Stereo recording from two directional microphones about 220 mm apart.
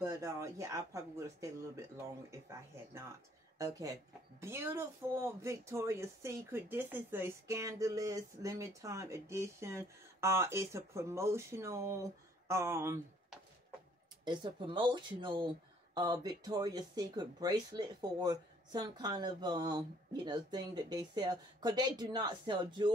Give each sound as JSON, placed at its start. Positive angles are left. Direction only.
{"t": 0.0, "sound": "speech", "side_deg": -15}
{"t": 14.2, "sound": "speech", "side_deg": -20}